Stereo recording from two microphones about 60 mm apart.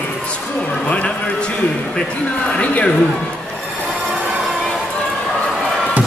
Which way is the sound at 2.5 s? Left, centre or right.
Left.